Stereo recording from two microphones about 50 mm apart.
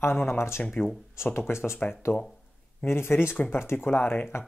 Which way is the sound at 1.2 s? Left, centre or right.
Left.